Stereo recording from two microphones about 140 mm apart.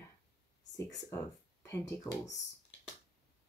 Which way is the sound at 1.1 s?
20° left (ahead or behind).